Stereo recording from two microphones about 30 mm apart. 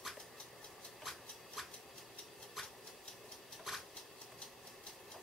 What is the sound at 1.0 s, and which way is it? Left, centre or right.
Shuffle, centre.